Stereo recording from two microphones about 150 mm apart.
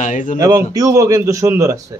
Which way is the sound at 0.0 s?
60° left (ahead or behind).